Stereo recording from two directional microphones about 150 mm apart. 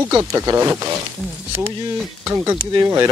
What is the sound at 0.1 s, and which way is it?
Speech, 20° right (ahead or behind).